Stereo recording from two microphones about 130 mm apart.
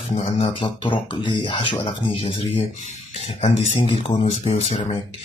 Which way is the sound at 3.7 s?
65° left (ahead or behind).